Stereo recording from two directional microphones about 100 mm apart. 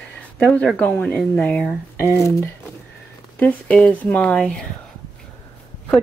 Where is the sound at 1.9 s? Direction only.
25° left (ahead or behind).